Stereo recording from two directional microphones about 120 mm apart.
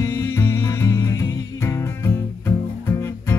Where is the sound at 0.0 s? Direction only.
25° left (ahead or behind).